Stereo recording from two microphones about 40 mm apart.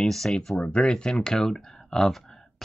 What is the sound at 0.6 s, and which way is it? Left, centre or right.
Speech, left.